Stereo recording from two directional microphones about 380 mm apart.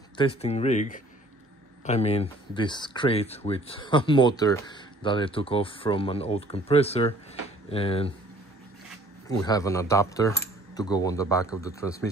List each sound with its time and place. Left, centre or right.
0.2 s speech: centre
9.4 s speech: centre